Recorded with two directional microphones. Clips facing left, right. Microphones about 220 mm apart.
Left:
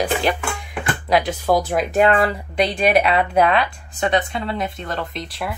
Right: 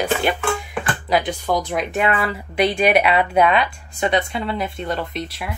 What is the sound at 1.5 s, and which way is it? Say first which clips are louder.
Speech: left 4 dB; 5° left (ahead or behind).